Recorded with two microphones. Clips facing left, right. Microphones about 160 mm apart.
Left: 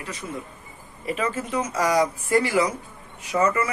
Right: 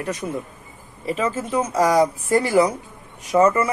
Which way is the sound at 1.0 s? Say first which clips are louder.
Right 3 dB; 30° right (ahead or behind).